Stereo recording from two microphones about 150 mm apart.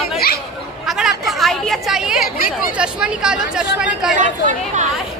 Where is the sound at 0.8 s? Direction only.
Centre (ahead or behind).